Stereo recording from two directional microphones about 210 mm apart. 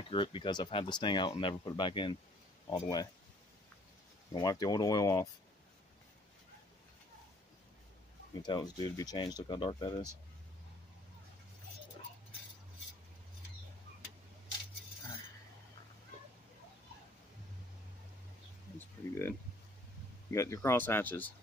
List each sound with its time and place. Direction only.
0.1 s speech: 25° left (ahead or behind)
4.3 s speech: 20° left (ahead or behind)
8.4 s speech: 20° left (ahead or behind)
18.8 s a sound: 10° left (ahead or behind)
20.2 s speech: 15° left (ahead or behind)